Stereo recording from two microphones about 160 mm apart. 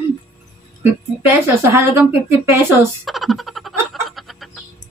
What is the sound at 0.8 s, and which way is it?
Speech, 15° right (ahead or behind).